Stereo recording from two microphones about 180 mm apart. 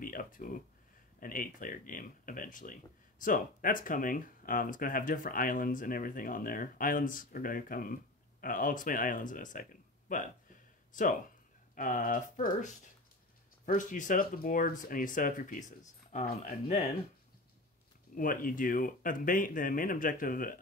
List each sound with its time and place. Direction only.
0.0 s a sound: 50° left (ahead or behind)
1.2 s speech: 50° left (ahead or behind)
11.7 s speech: 50° left (ahead or behind)
18.1 s speech: 50° left (ahead or behind)